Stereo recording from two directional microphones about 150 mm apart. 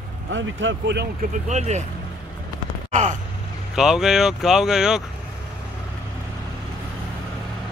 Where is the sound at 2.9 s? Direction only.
55° right (ahead or behind).